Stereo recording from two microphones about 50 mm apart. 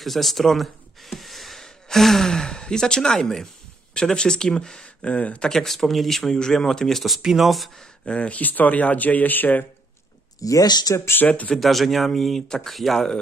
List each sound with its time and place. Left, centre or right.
0.0 s speech: centre
4.8 s speech: left
5.5 s speech: centre
7.2 s speech: centre
7.8 s speech: left
10.9 s speech: left
11.2 s speech: left
11.5 s speech: centre